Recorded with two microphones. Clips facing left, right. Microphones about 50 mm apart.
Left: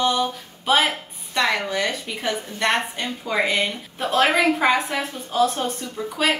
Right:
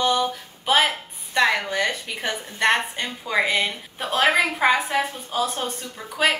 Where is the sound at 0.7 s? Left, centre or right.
Centre.